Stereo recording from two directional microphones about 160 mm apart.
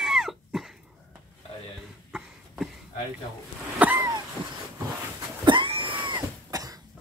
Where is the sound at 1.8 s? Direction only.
5° right (ahead or behind).